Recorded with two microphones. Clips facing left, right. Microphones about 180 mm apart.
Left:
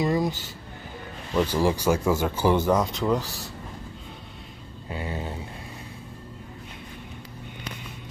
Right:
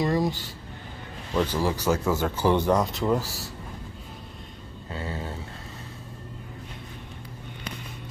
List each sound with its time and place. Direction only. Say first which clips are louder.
0.0 s a sound: even; centre (ahead or behind)
1.3 s speech: left 2 dB; 10° left (ahead or behind)
4.8 s speech: left 1 dB; 15° left (ahead or behind)